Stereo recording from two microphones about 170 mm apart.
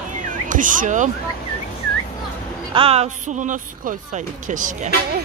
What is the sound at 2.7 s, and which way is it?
Speech, 35° right (ahead or behind).